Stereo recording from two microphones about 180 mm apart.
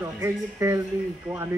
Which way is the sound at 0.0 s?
15° right (ahead or behind).